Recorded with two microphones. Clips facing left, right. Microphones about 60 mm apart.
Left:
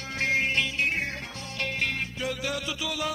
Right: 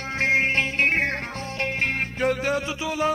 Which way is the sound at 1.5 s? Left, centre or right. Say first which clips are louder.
Right 4 dB; right.